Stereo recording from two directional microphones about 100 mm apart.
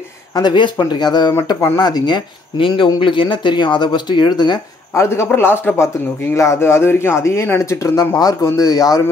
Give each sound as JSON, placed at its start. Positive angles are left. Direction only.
{"t": 0.3, "sound": "speech", "side_deg": 45}
{"t": 4.9, "sound": "speech", "side_deg": 25}